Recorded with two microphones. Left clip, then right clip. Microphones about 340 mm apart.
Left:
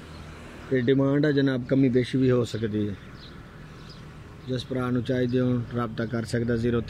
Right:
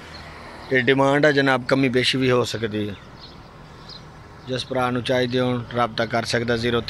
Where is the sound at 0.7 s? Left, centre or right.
Right.